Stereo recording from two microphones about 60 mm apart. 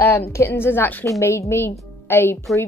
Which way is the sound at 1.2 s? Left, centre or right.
Left.